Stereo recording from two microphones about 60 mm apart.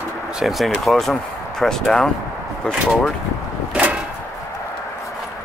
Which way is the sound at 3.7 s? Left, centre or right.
Centre.